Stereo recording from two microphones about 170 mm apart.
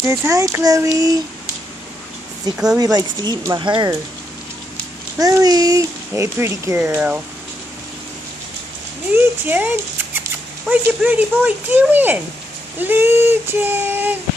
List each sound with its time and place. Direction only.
0.0 s speech: 20° right (ahead or behind)
2.5 s speech: 5° right (ahead or behind)
2.8 s speech: 25° right (ahead or behind)
5.2 s a child's voice: 20° right (ahead or behind)
9.1 s a child's voice: 10° right (ahead or behind)